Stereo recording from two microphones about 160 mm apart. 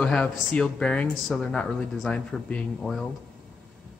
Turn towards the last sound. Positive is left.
turn(degrees=5)  # may be behind; listen again after turning